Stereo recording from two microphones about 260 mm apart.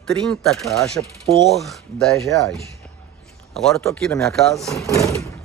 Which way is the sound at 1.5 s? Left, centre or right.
Centre.